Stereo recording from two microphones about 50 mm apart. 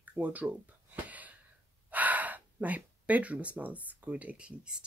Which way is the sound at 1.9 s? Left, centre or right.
Right.